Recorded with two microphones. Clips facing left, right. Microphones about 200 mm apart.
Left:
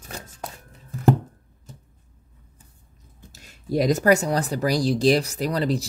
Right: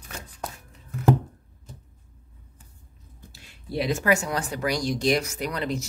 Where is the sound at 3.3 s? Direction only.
40° left (ahead or behind).